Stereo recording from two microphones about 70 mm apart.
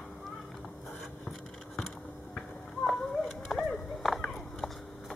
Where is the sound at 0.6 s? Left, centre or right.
Centre.